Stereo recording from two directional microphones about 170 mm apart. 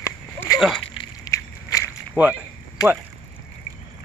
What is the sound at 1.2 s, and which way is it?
Walk, 15° left (ahead or behind).